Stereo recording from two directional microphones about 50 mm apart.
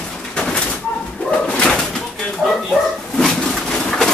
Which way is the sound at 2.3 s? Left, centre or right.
Centre.